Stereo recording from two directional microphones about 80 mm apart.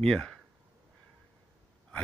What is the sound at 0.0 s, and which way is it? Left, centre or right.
Speech, centre.